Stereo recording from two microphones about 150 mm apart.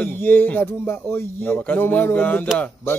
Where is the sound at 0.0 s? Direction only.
15° left (ahead or behind).